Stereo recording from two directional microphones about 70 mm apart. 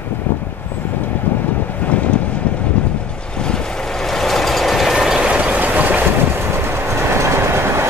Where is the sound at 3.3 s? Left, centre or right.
Centre.